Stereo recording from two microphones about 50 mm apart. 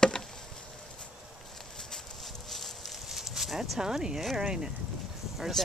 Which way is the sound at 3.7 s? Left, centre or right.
Centre.